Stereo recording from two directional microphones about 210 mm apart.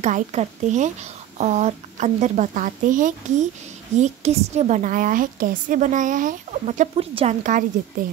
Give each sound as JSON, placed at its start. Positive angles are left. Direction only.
{"t": 0.0, "sound": "a woman's voice", "side_deg": -35}